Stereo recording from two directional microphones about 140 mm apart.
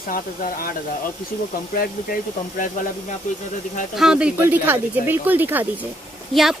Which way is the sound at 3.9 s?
5° right (ahead or behind).